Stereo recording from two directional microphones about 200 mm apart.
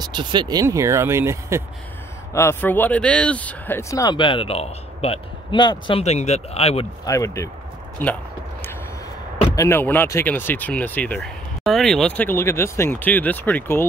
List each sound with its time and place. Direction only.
0.0 s speech: 20° right (ahead or behind)
2.3 s speech: 10° left (ahead or behind); by 6.9 s 30° left (ahead or behind)
7.1 s speech: 15° left (ahead or behind)
9.6 s speech: 10° left (ahead or behind)